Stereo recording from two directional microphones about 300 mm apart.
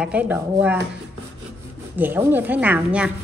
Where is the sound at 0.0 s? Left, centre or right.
Centre.